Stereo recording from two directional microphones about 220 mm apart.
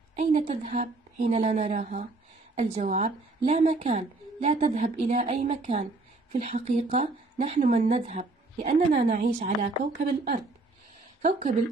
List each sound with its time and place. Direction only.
0.2 s a woman's voice: 30° right (ahead or behind)
11.2 s a woman's voice: 35° right (ahead or behind)